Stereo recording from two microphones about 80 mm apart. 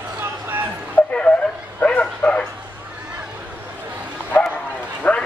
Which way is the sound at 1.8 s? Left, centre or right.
Centre.